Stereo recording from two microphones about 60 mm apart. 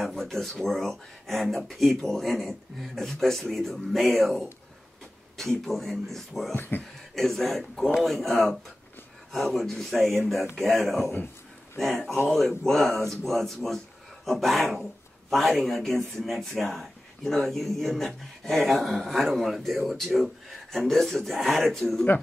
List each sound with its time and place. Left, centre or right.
0.0 s speech: centre
6.5 s speech: left
7.2 s speech: centre